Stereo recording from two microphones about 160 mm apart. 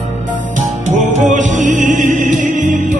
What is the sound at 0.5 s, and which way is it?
Music, 50° right (ahead or behind).